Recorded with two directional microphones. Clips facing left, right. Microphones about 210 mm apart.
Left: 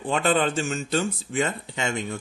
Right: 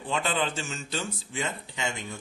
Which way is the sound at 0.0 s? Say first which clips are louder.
Left 6 dB; 55° left (ahead or behind).